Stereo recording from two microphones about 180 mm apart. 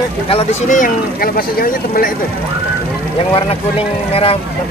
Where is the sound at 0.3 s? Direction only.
35° left (ahead or behind); by 2.1 s 50° left (ahead or behind).